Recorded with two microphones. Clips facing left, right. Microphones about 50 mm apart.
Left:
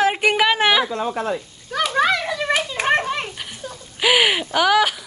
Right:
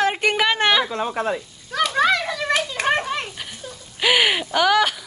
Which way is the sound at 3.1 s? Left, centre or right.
Centre.